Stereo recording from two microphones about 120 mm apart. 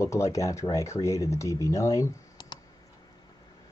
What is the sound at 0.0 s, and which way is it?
Speech, 25° left (ahead or behind).